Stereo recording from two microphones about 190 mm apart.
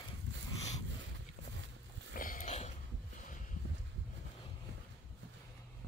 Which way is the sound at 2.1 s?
45° left (ahead or behind).